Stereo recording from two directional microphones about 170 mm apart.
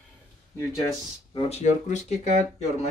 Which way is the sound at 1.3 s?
40° left (ahead or behind).